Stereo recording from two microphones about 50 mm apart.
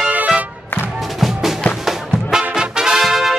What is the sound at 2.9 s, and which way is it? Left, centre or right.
Music, centre.